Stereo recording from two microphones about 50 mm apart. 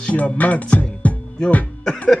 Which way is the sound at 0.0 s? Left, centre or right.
Left.